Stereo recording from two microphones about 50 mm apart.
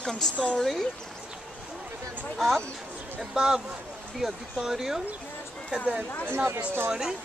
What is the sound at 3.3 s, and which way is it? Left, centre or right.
Speech, centre.